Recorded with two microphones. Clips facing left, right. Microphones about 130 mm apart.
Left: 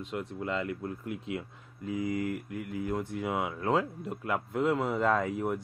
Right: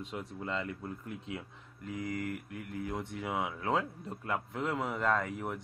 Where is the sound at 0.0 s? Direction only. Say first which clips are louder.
Left 4 dB; centre (ahead or behind).